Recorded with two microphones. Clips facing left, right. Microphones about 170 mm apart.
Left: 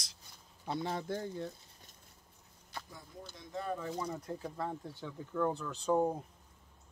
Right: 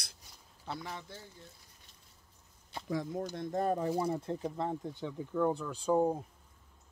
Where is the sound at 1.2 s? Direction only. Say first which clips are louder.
Left 14 dB; 70° left (ahead or behind).